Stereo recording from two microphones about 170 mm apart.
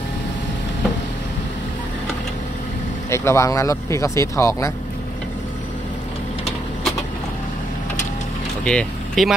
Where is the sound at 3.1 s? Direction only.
15° left (ahead or behind).